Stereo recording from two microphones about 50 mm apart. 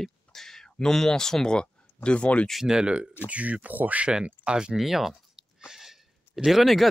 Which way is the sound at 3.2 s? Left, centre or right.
Right.